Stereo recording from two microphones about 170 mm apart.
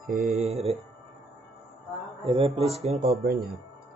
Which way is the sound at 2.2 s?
35° right (ahead or behind).